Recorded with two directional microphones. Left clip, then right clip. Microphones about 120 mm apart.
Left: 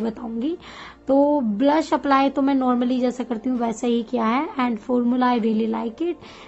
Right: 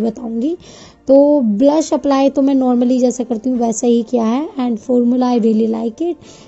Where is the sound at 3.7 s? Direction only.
40° right (ahead or behind).